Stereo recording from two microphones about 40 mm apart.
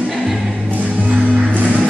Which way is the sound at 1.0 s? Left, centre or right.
Right.